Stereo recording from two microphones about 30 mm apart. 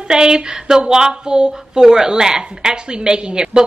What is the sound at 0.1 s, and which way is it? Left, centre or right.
Speech, right.